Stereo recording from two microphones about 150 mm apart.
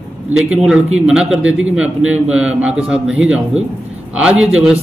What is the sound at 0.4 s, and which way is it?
A man's voice, 5° right (ahead or behind).